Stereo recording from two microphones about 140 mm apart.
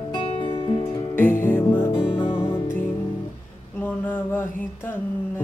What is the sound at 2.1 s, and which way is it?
Music, 40° left (ahead or behind).